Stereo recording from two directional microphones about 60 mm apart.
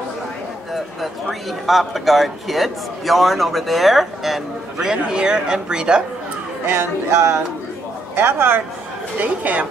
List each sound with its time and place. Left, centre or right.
1.7 s a man's voice: centre
6.6 s speech: right
8.2 s speech: right
9.2 s speech: right